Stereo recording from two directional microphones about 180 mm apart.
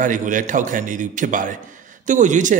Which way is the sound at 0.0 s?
45° right (ahead or behind).